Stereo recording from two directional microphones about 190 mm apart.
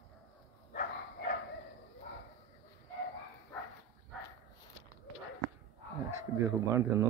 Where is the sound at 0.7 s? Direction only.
50° left (ahead or behind).